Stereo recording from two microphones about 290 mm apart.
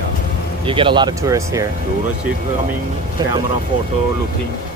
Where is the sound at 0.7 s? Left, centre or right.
Centre.